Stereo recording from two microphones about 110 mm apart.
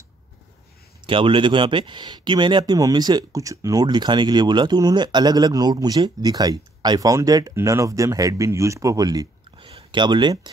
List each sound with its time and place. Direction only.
1.0 s speech: 50° right (ahead or behind); by 3.8 s 30° right (ahead or behind)
3.8 s speech: 45° right (ahead or behind)
9.6 s a sound: 55° right (ahead or behind)